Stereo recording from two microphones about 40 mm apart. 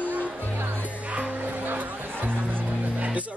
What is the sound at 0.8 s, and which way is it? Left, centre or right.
Music, right.